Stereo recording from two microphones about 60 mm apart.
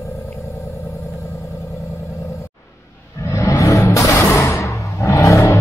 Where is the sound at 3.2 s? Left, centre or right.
Left.